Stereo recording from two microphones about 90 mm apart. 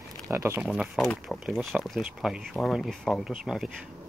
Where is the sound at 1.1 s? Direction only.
5° left (ahead or behind).